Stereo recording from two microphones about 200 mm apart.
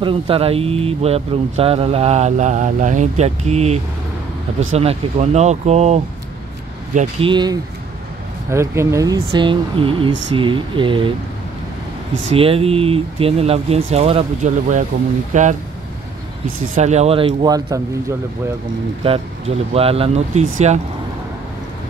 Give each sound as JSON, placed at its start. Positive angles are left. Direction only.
{"t": 0.0, "sound": "speech", "side_deg": -25}
{"t": 7.2, "sound": "speech", "side_deg": -20}
{"t": 12.4, "sound": "speech", "side_deg": -30}
{"t": 16.7, "sound": "speech", "side_deg": -35}
{"t": 19.7, "sound": "speech", "side_deg": -30}